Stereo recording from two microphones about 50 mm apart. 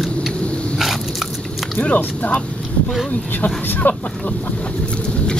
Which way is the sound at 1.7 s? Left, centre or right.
Left.